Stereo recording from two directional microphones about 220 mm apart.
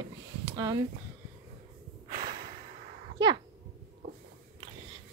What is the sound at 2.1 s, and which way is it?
Breathing, 45° right (ahead or behind).